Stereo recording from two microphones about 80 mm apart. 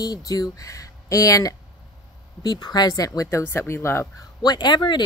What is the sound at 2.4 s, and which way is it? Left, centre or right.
Speech, left.